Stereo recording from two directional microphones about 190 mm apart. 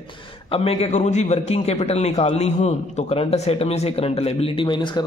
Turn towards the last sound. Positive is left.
turn(degrees=25)  # may be behind; listen again after turning